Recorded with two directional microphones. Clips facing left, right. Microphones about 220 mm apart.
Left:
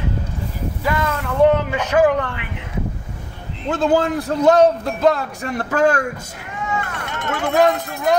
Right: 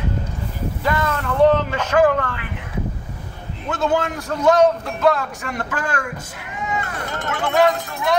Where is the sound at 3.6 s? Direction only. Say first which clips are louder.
Left 4 dB; 30° left (ahead or behind).